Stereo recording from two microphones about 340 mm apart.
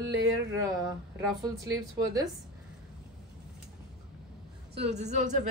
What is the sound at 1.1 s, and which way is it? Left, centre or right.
Speech, centre.